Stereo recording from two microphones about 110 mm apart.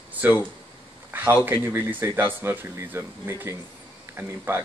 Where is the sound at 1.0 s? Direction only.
15° right (ahead or behind).